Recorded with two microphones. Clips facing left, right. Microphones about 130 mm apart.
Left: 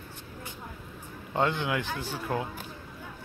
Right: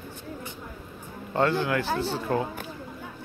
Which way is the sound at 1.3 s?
15° left (ahead or behind).